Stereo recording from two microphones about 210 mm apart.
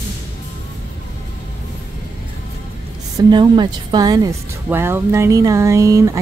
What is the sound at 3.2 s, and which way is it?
Speech, 20° right (ahead or behind).